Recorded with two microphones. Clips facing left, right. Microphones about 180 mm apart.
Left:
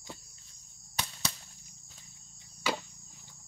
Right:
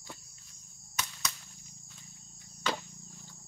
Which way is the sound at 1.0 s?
30° left (ahead or behind).